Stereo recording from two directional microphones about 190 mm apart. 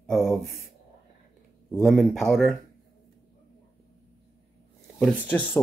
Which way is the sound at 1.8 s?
5° right (ahead or behind).